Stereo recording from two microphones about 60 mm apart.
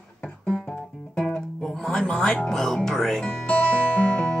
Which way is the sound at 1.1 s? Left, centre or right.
Centre.